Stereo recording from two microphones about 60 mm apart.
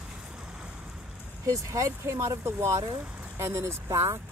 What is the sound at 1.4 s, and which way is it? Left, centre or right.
Speech, right.